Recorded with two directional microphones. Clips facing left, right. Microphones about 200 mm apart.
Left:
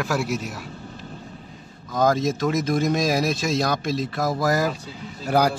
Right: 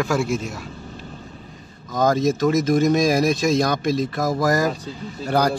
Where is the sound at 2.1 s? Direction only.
Centre (ahead or behind).